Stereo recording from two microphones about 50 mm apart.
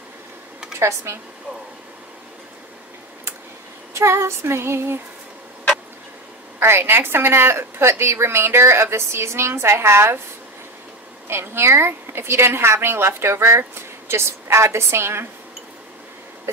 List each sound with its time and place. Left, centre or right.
0.7 s speech: right
3.9 s a woman's voice: right
6.6 s a woman's voice: right
11.2 s a woman's voice: right